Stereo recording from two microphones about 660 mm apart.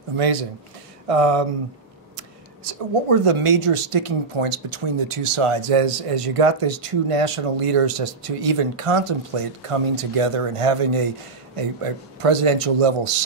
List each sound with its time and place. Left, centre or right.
0.1 s speech: right